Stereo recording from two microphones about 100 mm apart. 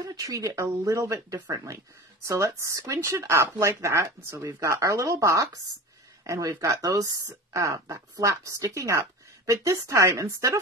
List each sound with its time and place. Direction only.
0.0 s speech: 35° right (ahead or behind)